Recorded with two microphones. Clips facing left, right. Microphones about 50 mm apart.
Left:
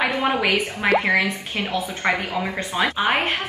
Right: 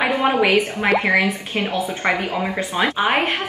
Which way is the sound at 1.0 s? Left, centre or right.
Centre.